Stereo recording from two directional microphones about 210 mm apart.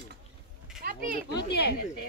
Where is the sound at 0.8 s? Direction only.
40° right (ahead or behind).